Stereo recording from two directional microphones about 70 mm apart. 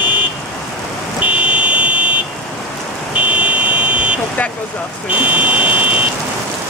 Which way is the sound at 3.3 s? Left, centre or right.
Right.